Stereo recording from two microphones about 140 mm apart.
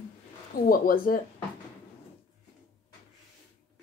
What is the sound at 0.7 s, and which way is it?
Speech, 90° left.